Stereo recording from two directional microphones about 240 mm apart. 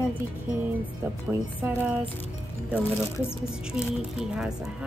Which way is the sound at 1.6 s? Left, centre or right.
Centre.